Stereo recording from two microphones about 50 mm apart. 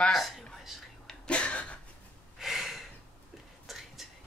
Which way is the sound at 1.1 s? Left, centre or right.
Left.